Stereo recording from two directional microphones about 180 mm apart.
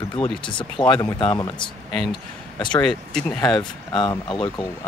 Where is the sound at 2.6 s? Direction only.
25° left (ahead or behind).